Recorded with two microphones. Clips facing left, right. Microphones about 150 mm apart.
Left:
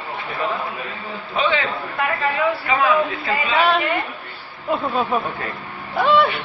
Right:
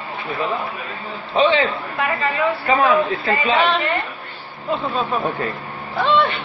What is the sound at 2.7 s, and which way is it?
Speech, 45° right (ahead or behind).